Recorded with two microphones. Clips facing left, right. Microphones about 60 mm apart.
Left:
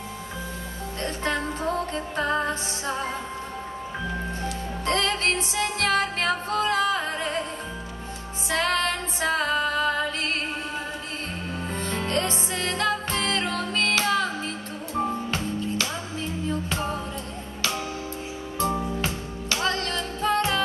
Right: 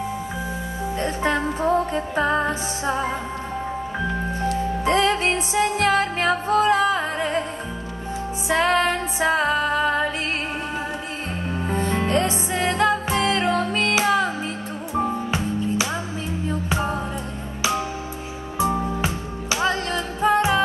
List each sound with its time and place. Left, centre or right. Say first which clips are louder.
0.9 s music: right 5 dB; centre
4.8 s music: right 4 dB; centre
8.5 s music: right 5 dB; centre
11.7 s music: right 6 dB; centre
16.4 s music: right 4 dB; centre